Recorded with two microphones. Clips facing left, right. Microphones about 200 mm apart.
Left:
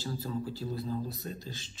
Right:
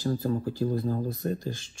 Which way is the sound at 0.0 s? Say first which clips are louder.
Right 8 dB; 50° right (ahead or behind).